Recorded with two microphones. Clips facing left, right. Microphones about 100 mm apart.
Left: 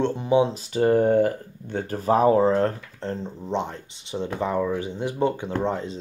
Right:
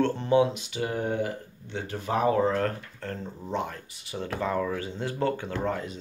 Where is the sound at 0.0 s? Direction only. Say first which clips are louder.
Left 2 dB; 15° left (ahead or behind).